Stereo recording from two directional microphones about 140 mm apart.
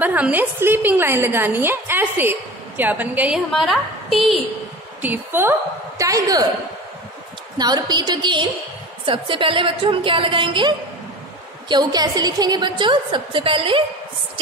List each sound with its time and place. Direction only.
0.0 s a woman's voice: 10° right (ahead or behind)
3.5 s a woman's voice: centre (ahead or behind)
5.0 s a woman's voice: 15° right (ahead or behind)
7.5 s a woman's voice: 30° right (ahead or behind)
11.7 s a woman's voice: 30° right (ahead or behind)